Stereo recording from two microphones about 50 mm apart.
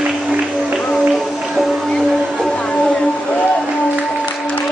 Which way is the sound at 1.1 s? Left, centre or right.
Centre.